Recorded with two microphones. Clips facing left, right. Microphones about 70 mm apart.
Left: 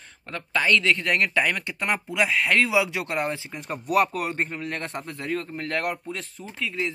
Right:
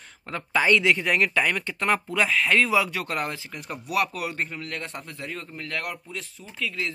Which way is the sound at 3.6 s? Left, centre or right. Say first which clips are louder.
Left 4 dB; left.